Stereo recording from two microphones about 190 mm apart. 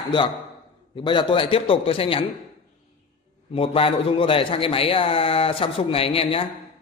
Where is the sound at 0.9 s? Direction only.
25° left (ahead or behind).